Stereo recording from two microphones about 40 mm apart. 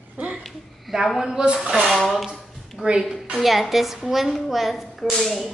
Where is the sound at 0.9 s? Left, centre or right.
Centre.